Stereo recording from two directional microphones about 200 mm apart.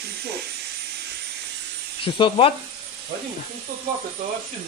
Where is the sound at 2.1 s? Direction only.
25° left (ahead or behind).